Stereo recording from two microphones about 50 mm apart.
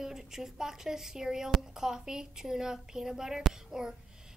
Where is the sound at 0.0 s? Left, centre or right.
Centre.